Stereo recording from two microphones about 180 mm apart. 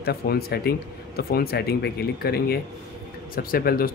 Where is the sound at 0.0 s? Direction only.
60° left (ahead or behind).